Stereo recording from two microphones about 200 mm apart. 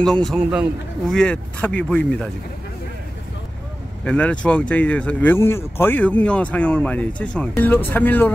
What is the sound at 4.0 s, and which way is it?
A man's voice, 5° left (ahead or behind).